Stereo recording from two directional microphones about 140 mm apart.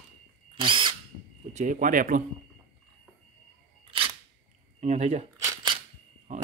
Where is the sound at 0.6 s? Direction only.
35° right (ahead or behind).